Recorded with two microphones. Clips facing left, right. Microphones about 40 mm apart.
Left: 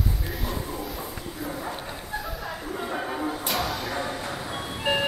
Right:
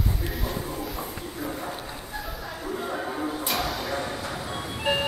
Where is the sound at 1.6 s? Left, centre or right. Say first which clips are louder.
Left 1 dB; left.